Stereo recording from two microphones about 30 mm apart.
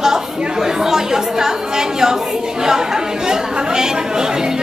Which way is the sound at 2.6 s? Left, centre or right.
Centre.